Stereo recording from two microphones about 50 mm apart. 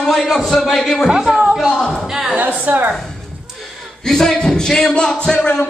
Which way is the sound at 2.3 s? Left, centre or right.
Right.